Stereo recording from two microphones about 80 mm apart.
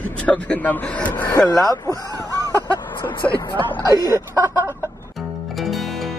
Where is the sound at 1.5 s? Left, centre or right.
Left.